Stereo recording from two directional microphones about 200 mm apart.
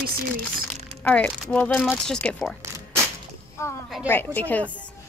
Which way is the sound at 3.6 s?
15° left (ahead or behind).